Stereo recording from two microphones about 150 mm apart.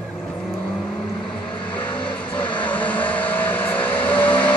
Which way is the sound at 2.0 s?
10° left (ahead or behind).